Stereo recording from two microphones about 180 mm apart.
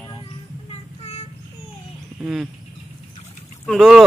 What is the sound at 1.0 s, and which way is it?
Child singing, 35° left (ahead or behind).